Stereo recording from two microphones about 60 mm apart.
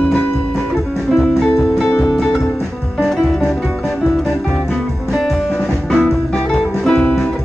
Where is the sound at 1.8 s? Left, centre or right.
Centre.